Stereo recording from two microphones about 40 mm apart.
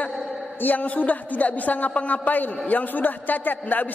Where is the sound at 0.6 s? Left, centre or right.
Left.